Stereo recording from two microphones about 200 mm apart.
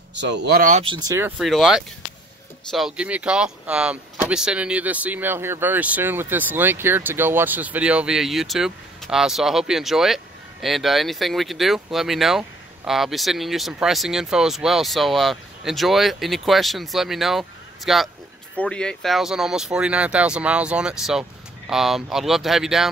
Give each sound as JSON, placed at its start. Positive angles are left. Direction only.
{"t": 0.1, "sound": "speech", "side_deg": -60}
{"t": 0.8, "sound": "speech", "side_deg": -20}
{"t": 1.4, "sound": "speech", "side_deg": 0}